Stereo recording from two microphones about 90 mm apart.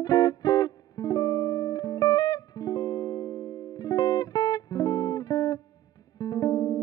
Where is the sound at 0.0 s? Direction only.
45° left (ahead or behind).